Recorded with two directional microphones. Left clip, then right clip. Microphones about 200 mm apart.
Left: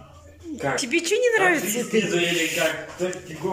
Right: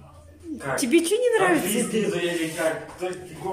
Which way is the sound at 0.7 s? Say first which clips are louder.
Right 2 dB; 10° right (ahead or behind).